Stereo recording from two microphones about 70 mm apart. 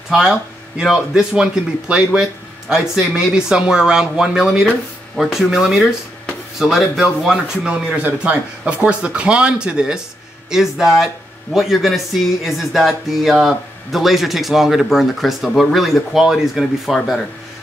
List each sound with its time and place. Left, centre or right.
0.7 s speech: centre
8.0 s a man's voice: centre